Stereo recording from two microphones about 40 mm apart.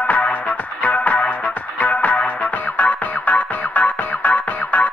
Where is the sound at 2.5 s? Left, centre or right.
Left.